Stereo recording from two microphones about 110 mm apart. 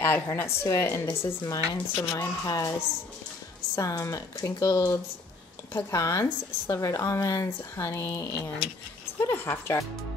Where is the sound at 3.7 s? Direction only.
30° left (ahead or behind).